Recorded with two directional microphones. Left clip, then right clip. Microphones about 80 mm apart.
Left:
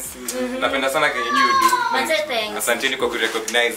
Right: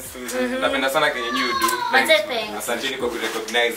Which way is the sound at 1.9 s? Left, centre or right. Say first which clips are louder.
Right 4 dB; right.